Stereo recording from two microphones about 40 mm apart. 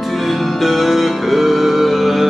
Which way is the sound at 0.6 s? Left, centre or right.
Centre.